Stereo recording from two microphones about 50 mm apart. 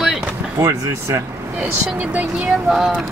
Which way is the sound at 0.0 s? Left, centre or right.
Centre.